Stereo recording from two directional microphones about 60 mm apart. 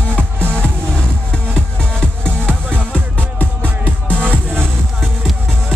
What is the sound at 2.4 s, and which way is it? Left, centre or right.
Music, right.